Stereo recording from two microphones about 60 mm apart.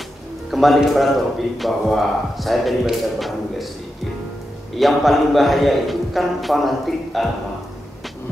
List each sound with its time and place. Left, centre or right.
0.5 s a man's voice: centre
4.7 s a man's voice: centre